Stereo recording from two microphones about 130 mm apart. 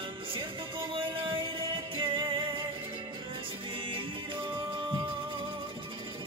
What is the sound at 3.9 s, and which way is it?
Music, 40° right (ahead or behind).